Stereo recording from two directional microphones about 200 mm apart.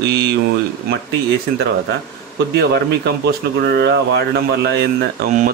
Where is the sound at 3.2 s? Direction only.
55° right (ahead or behind).